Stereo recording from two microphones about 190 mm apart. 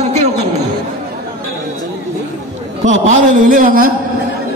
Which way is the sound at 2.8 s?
40° right (ahead or behind).